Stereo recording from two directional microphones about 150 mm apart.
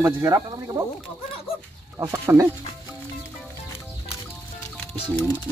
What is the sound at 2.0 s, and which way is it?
Speech, 20° right (ahead or behind).